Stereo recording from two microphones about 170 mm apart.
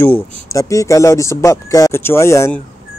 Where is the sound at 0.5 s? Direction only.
20° left (ahead or behind).